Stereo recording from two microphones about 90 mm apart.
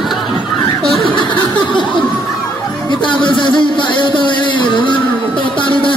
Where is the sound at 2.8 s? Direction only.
60° left (ahead or behind).